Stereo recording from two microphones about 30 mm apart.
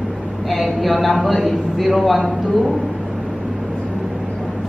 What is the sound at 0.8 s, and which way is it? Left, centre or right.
A man's voice, centre.